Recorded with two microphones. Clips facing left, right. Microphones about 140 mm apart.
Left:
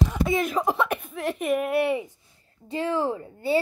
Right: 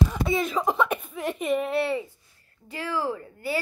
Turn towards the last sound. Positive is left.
turn(degrees=25)  # may be behind; listen again after turning